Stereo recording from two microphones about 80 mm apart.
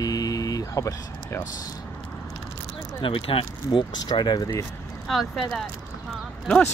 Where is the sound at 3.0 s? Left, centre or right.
Left.